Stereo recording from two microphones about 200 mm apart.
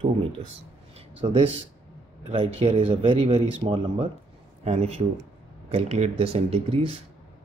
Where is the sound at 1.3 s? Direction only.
30° right (ahead or behind).